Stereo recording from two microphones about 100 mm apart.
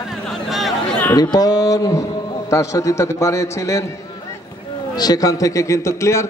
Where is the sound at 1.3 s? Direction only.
40° left (ahead or behind).